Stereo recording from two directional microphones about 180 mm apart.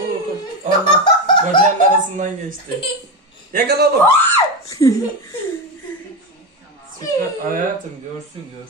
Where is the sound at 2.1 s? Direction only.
45° right (ahead or behind).